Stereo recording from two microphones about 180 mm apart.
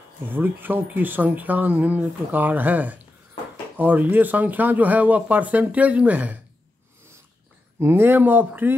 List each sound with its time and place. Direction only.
0.3 s speech: 10° right (ahead or behind)
7.8 s speech: 10° right (ahead or behind)